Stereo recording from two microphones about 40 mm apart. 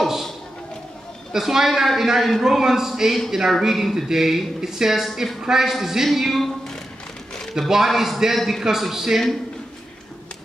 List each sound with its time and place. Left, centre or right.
0.0 s a sound: centre
1.3 s speech: centre
7.5 s speech: centre